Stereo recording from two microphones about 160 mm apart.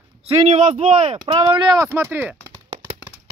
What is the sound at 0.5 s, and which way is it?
Speech, 45° right (ahead or behind).